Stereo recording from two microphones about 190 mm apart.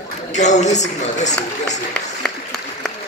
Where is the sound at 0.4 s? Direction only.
40° left (ahead or behind).